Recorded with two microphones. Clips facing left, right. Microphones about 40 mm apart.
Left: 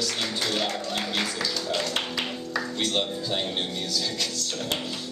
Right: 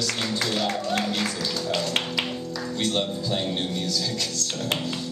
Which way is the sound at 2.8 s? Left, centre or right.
Centre.